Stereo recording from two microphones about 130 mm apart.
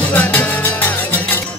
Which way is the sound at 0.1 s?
10° left (ahead or behind).